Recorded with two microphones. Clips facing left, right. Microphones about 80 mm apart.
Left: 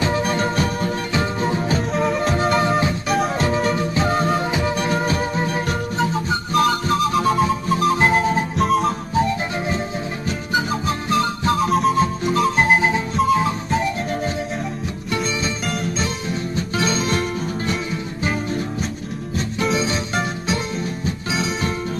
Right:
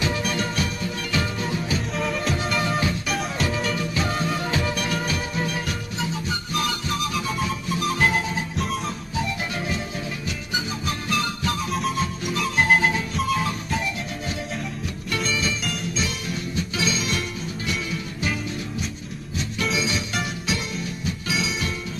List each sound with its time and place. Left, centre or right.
0.0 s music: left
3.1 s music: left
4.5 s music: centre
4.7 s music: left
12.6 s music: left
15.6 s music: left
18.2 s music: left